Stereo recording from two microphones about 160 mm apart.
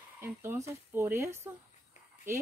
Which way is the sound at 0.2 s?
15° right (ahead or behind).